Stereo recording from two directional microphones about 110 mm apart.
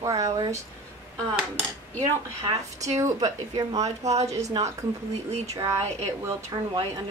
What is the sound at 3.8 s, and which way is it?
Speech, 90° right.